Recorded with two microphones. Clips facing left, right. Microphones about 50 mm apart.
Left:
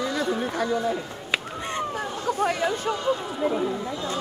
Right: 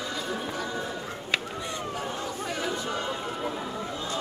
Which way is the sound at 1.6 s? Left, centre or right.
Left.